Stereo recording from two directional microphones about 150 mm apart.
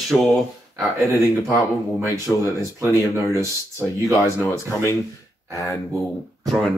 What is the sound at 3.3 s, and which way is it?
Speech, 20° right (ahead or behind).